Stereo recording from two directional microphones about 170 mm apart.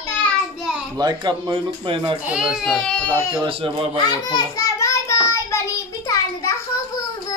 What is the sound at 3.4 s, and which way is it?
Speech, 30° right (ahead or behind).